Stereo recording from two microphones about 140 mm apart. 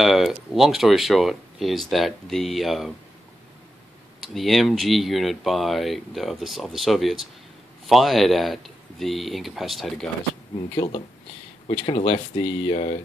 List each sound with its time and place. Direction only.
0.0 s speech: centre (ahead or behind)
4.2 s speech: centre (ahead or behind)
10.7 s speech: 35° left (ahead or behind)